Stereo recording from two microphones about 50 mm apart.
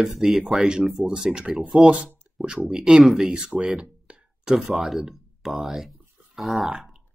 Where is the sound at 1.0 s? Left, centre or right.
Centre.